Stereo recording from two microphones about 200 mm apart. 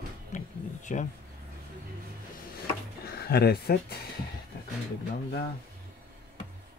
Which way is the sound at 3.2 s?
50° left (ahead or behind).